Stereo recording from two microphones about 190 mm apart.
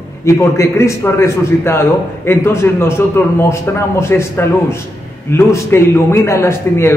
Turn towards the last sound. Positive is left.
turn(degrees=15)  # may be behind; listen again after turning